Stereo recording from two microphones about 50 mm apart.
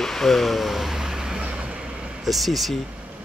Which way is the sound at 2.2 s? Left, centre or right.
Centre.